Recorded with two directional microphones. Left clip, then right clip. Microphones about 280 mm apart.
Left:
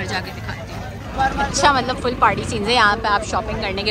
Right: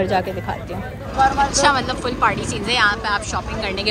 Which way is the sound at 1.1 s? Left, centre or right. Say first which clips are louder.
Right 4 dB; right.